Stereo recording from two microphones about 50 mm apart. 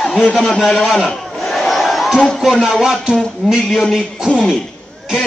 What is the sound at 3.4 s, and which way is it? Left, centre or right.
Speech, centre.